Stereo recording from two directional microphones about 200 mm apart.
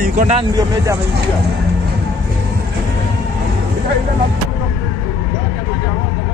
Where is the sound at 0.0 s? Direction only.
40° right (ahead or behind).